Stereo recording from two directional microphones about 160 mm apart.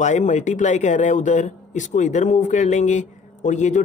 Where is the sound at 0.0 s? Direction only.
50° left (ahead or behind).